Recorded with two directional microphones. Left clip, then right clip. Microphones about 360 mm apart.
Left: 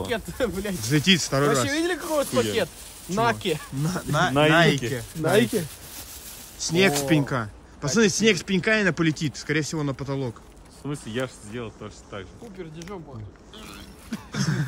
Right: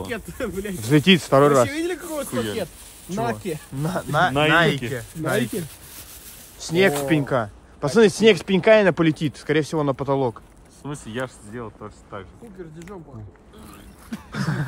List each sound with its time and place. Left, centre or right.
0.1 s speech: left
0.8 s speech: centre
1.7 s speech: left
2.5 s speech: centre
14.1 s throat clearing: centre